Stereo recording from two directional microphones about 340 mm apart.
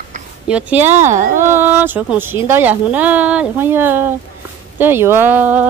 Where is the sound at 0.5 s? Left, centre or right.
Centre.